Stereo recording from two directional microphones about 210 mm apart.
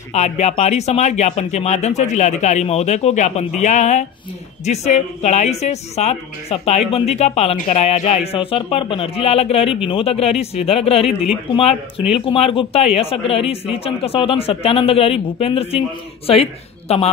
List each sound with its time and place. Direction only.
0.1 s a woman's voice: 30° left (ahead or behind)